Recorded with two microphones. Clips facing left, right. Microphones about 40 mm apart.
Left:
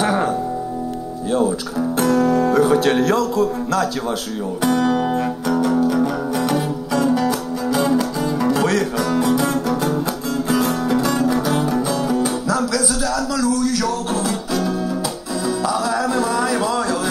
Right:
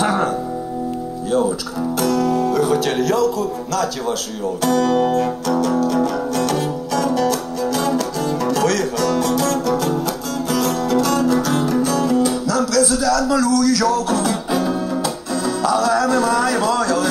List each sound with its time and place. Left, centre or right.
0.0 s music: centre
2.0 s music: left
4.6 s music: centre
14.5 s music: centre
15.4 s music: left